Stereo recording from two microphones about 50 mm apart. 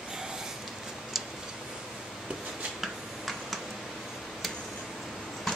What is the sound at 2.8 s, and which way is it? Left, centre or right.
Tick-tock, centre.